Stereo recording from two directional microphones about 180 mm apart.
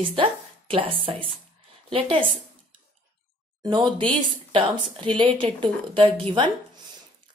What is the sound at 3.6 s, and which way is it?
Speech, 25° right (ahead or behind).